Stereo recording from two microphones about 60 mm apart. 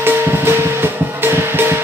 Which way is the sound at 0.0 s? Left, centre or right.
Right.